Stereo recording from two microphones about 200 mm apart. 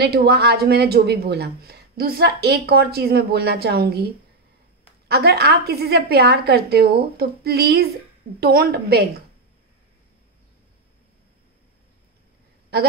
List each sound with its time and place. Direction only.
0.0 s a woman's voice: 50° right (ahead or behind)